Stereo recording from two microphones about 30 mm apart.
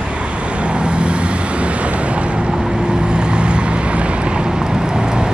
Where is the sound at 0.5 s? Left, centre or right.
Right.